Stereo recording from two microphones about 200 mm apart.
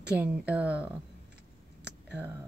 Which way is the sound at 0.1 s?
5° right (ahead or behind).